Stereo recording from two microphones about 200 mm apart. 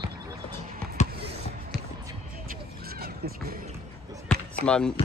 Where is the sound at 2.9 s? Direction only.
50° right (ahead or behind).